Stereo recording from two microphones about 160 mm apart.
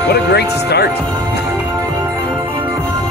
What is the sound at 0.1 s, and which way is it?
Speech, 90° left.